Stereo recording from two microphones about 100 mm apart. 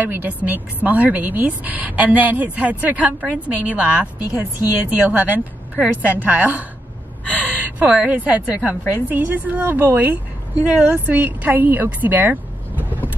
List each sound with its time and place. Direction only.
0.0 s a woman's voice: 20° right (ahead or behind)